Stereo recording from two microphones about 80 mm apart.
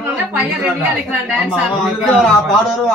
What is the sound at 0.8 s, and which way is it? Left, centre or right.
Speech, centre.